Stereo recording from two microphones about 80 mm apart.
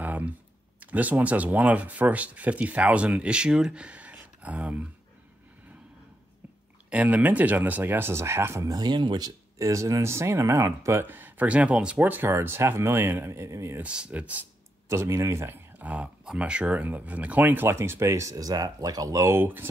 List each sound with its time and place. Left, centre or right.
0.0 s a sound: right
0.7 s speech: centre
6.9 s speech: centre; by 8.6 s right
8.6 s speech: right
9.6 s speech: right
11.1 s speech: right
13.7 s speech: centre
14.9 s speech: right
15.8 s speech: centre; by 19.2 s right
19.2 s speech: right